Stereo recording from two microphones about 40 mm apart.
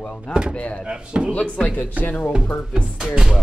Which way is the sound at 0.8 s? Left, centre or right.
Right.